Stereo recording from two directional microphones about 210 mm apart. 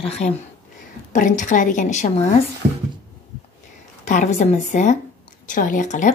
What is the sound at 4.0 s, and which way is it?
A woman's voice, 35° left (ahead or behind).